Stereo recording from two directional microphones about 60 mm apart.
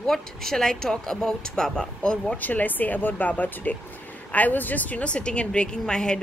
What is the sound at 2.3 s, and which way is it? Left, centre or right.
A woman's voice, left.